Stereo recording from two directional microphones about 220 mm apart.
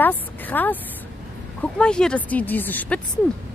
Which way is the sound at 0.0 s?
10° left (ahead or behind).